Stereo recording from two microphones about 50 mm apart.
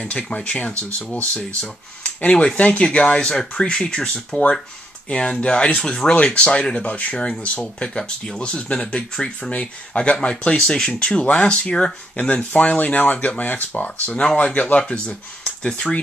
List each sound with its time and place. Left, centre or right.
0.0 s speech: left
12.2 s speech: left
14.0 s speech: left